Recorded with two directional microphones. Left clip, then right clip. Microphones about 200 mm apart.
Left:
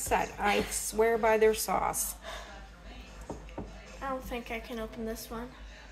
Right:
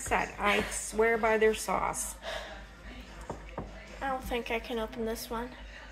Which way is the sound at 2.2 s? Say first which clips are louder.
Right 4 dB; 35° right (ahead or behind).